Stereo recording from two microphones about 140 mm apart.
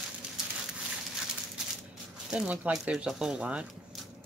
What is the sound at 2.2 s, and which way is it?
Speech, 10° right (ahead or behind).